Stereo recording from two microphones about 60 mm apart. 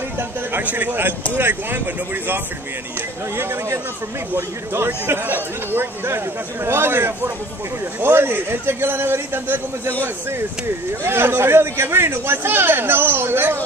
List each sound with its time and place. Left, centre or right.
0.5 s speech: right
3.3 s speech: right